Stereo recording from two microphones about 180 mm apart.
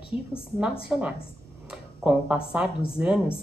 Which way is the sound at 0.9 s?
5° right (ahead or behind).